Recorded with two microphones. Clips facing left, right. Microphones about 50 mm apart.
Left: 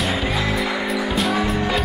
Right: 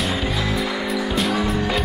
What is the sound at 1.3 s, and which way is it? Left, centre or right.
Music, centre.